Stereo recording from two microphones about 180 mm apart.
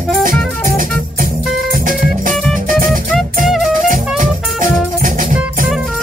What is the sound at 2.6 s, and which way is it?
Music, 50° right (ahead or behind).